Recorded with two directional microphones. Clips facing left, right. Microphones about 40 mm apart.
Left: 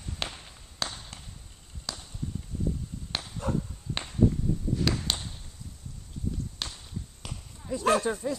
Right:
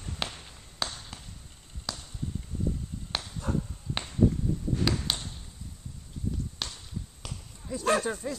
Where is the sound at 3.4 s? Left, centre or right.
Left.